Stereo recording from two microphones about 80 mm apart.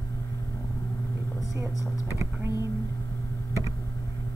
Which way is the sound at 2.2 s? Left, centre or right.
Right.